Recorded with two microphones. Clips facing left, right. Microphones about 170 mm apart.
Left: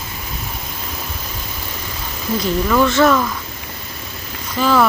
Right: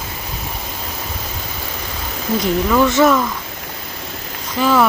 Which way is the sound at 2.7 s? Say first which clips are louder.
Even; 10° right (ahead or behind).